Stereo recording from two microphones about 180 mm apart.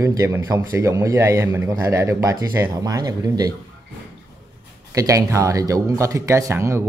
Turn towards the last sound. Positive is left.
turn(degrees=-15)  # may be behind; listen again after turning